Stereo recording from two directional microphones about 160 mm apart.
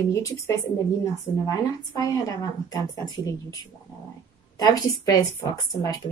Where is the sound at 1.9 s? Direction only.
20° left (ahead or behind).